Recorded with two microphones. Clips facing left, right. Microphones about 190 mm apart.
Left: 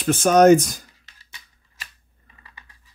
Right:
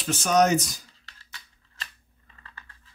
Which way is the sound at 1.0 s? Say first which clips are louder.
Right 1 dB; 15° left (ahead or behind).